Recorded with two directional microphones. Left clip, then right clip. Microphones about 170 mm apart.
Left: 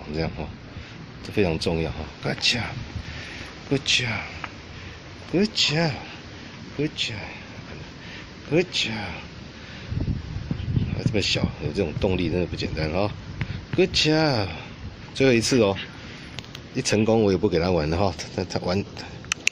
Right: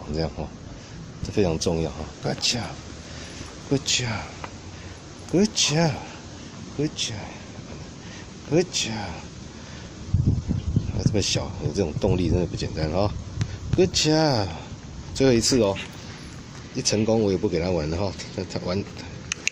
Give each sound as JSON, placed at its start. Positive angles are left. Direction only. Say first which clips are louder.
{"t": 0.1, "sound": "speech", "louder": "even", "side_deg": -10}
{"t": 3.7, "sound": "speech", "louder": "left 2 dB", "side_deg": -10}
{"t": 5.3, "sound": "speech", "louder": "even", "side_deg": -15}
{"t": 6.8, "sound": "speech", "louder": "left 1 dB", "side_deg": -5}
{"t": 8.5, "sound": "speech", "louder": "even", "side_deg": -10}
{"t": 11.1, "sound": "speech", "louder": "left 2 dB", "side_deg": -5}